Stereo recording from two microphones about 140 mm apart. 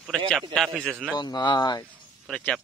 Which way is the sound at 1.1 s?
30° left (ahead or behind).